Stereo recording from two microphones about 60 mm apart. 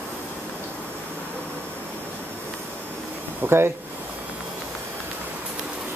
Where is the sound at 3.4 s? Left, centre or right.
Right.